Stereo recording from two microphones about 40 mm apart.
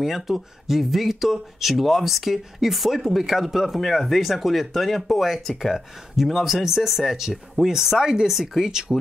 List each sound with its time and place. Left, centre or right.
0.0 s speech: centre